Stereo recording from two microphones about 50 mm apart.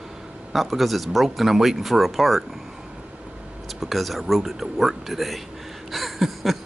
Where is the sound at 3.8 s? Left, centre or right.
Centre.